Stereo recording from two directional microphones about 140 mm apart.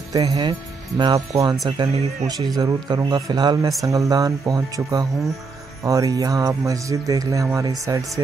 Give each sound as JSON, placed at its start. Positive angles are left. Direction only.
{"t": 0.1, "sound": "speech", "side_deg": -25}